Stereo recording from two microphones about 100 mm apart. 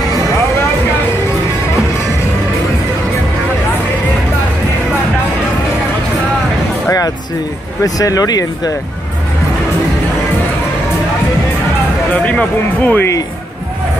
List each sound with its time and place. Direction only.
7.8 s speech: 35° left (ahead or behind)
12.1 s speech: 15° left (ahead or behind)